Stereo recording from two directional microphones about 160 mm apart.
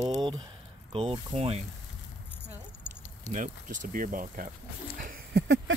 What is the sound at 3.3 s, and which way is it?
Speech, 55° right (ahead or behind).